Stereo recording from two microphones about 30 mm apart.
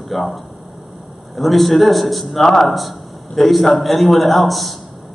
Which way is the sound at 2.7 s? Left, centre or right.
Centre.